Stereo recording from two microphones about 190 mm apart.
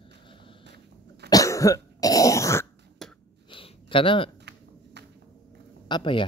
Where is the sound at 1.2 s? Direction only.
15° left (ahead or behind).